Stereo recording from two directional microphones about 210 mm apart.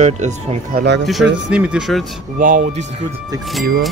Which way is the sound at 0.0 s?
35° right (ahead or behind).